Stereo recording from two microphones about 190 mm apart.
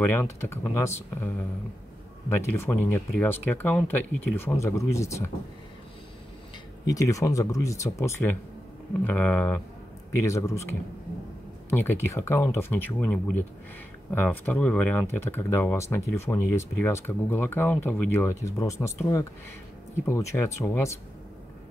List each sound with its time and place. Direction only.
0.0 s speech: 10° left (ahead or behind)
2.2 s speech: 15° left (ahead or behind)
6.8 s speech: 15° left (ahead or behind)
11.7 s speech: 10° left (ahead or behind)